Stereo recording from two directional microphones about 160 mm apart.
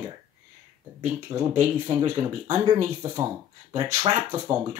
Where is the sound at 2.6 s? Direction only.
20° right (ahead or behind).